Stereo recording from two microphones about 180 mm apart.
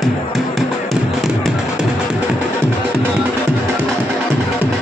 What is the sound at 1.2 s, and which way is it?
Music, centre (ahead or behind).